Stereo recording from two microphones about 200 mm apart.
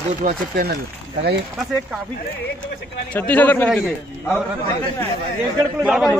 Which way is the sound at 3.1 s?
10° left (ahead or behind).